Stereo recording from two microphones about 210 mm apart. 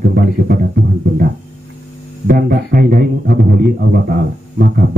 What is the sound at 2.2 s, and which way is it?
Speech, 45° right (ahead or behind).